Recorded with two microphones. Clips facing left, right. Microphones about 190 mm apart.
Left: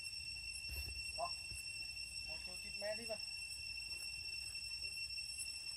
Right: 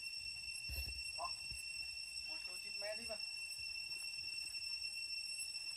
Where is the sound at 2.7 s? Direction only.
25° left (ahead or behind).